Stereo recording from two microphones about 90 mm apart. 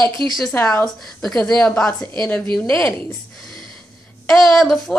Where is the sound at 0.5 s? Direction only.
25° left (ahead or behind).